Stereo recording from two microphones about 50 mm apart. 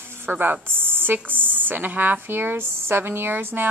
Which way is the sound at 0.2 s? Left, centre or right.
Right.